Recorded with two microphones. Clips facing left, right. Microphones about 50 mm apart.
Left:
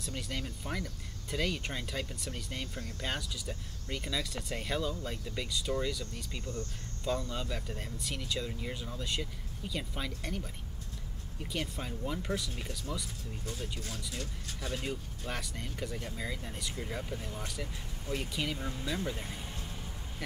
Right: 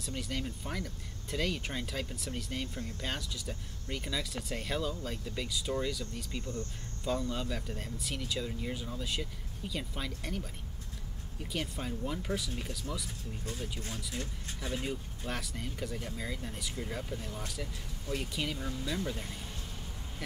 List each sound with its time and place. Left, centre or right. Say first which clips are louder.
0.0 s speech: right 1 dB; centre
11.5 s speech: right 1 dB; centre
13.5 s speech: right 1 dB; right
14.6 s speech: right 1 dB; centre
14.9 s speech: even; centre
18.6 s speech: even; left